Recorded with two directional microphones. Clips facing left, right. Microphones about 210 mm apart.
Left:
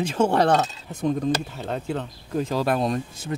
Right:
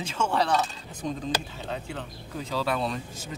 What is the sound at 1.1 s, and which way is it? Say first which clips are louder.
Speech: left 7 dB; 55° left (ahead or behind).